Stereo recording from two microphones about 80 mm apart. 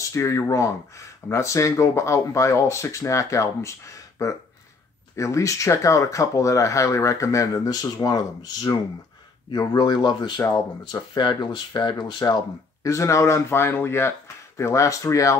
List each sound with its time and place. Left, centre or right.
0.0 s speech: left
12.8 s speech: left